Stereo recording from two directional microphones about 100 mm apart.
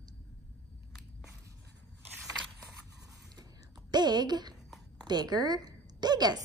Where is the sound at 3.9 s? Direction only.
45° right (ahead or behind).